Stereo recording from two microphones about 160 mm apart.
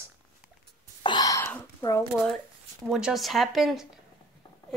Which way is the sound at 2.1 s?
Centre (ahead or behind).